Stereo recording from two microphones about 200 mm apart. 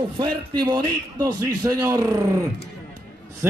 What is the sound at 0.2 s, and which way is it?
A man's voice, 25° right (ahead or behind).